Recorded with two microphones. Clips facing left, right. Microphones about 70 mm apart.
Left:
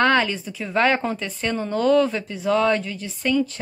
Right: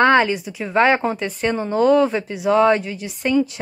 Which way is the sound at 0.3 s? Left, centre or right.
Centre.